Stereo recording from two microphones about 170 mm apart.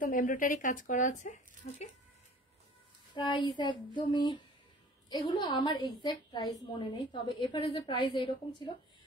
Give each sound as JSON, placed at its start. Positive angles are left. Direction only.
{"t": 0.0, "sound": "speech", "side_deg": 50}
{"t": 1.6, "sound": "speech", "side_deg": 60}
{"t": 3.2, "sound": "a woman's voice", "side_deg": 25}